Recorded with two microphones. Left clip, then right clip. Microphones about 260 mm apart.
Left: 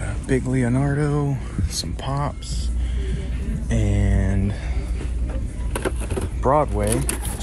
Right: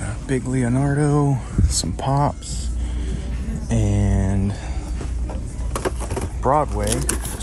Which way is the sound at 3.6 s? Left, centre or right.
Centre.